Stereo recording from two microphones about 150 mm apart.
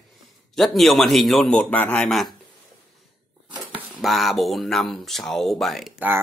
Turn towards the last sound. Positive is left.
turn(degrees=0)  # may be behind; listen again after turning